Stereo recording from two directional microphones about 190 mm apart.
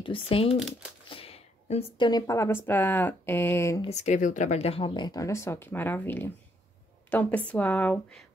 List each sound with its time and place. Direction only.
0.0 s a woman's voice: 30° left (ahead or behind)
3.8 s speech: 35° left (ahead or behind); by 8.3 s 5° left (ahead or behind)